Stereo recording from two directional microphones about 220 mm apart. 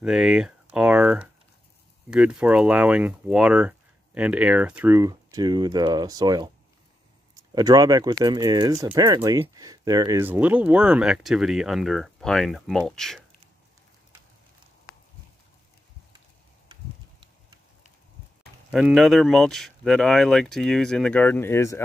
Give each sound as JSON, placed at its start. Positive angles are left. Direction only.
{"t": 0.0, "sound": "speech", "side_deg": -5}
{"t": 18.7, "sound": "speech", "side_deg": -5}